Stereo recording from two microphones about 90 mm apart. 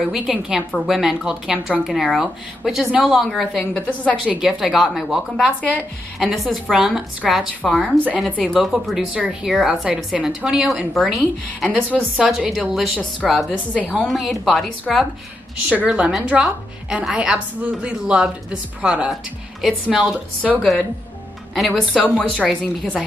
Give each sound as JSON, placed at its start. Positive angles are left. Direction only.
{"t": 0.0, "sound": "a woman's voice", "side_deg": -5}
{"t": 3.8, "sound": "speech", "side_deg": 15}
{"t": 4.4, "sound": "a woman's voice", "side_deg": -5}
{"t": 5.5, "sound": "speech", "side_deg": 15}
{"t": 6.1, "sound": "a woman's voice", "side_deg": 0}
{"t": 13.7, "sound": "speech", "side_deg": 15}
{"t": 14.0, "sound": "a woman's voice", "side_deg": 0}
{"t": 15.7, "sound": "a woman's voice", "side_deg": -15}